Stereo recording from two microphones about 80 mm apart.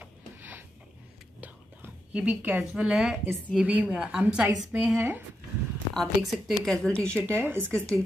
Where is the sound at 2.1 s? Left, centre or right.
Centre.